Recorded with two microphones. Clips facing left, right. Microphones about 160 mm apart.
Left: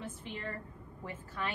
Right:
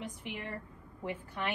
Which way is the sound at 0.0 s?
15° right (ahead or behind).